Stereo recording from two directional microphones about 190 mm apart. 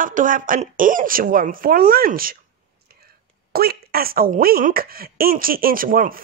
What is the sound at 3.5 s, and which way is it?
A woman's voice, 55° right (ahead or behind).